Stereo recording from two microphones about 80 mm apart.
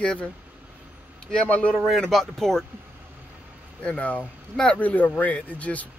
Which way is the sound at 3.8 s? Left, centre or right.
Centre.